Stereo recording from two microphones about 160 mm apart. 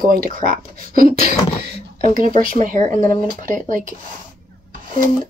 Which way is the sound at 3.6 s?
55° right (ahead or behind).